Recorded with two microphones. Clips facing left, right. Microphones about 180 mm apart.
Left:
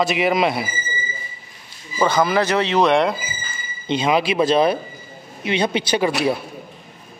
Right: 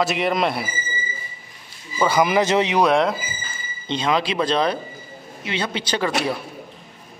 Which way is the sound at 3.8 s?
10° left (ahead or behind).